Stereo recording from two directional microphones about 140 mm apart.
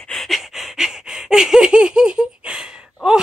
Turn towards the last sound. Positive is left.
turn(degrees=-5)  # may be behind; listen again after turning